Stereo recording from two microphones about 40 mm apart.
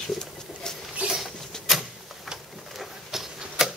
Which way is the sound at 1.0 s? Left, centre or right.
Right.